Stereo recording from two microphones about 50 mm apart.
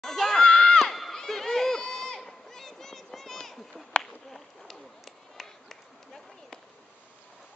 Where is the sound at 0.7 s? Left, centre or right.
Centre.